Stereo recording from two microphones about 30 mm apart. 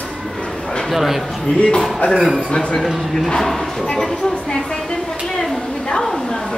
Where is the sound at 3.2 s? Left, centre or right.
Centre.